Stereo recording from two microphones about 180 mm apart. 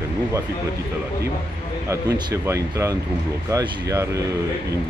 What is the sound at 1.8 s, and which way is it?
Speech, 20° right (ahead or behind).